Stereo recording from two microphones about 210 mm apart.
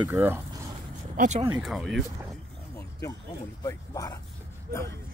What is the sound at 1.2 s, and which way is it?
Speech, 35° right (ahead or behind).